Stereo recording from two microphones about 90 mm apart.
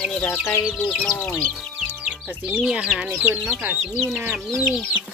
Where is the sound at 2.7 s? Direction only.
10° right (ahead or behind).